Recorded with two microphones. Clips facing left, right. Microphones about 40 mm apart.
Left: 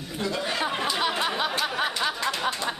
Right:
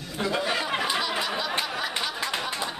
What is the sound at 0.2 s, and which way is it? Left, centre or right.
Speech, centre.